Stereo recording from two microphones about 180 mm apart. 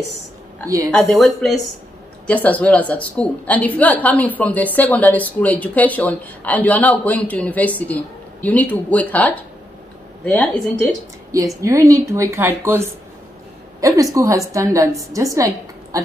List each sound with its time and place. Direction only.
0.9 s a man's voice: centre (ahead or behind)
11.3 s a woman's voice: 20° right (ahead or behind)